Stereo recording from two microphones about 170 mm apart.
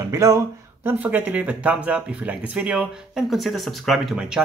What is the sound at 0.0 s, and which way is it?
Speech, 20° right (ahead or behind).